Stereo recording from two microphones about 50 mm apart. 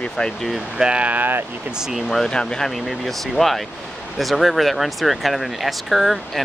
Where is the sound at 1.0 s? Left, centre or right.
Right.